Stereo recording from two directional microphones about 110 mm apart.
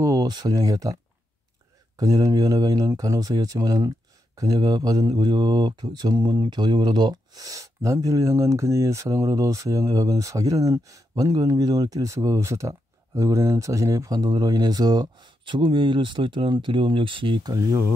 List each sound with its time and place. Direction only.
0.0 s speech: 35° right (ahead or behind)
2.0 s speech: 30° right (ahead or behind)